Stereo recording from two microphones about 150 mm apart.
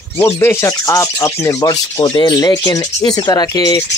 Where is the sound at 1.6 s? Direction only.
25° left (ahead or behind).